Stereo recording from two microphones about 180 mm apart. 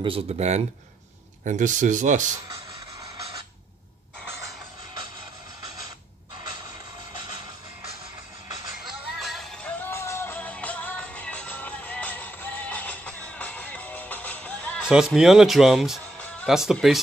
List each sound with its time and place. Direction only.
0.0 s speech: 35° right (ahead or behind)
8.8 s music: centre (ahead or behind)
14.9 s speech: 5° right (ahead or behind)